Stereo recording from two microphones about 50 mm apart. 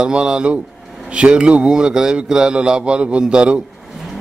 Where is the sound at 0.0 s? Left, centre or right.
Centre.